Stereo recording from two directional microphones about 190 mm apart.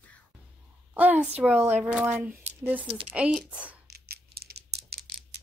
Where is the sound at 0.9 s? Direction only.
10° right (ahead or behind).